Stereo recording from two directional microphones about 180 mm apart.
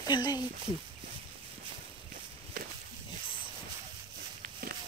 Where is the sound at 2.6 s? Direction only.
55° right (ahead or behind).